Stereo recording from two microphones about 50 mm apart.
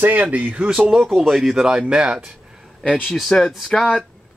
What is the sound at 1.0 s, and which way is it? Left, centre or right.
Speech, centre.